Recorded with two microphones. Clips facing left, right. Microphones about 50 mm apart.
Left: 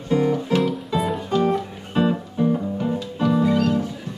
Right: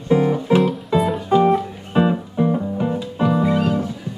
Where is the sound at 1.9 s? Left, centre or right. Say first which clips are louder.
Right 3 dB; centre.